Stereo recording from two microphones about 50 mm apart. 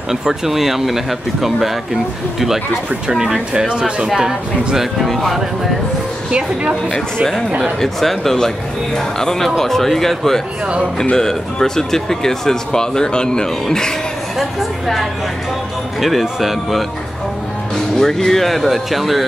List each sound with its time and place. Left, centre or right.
0.1 s speech: centre
3.2 s speech: centre
5.0 s speech: centre
6.3 s speech: right
7.8 s speech: centre
14.4 s speech: centre
17.9 s speech: centre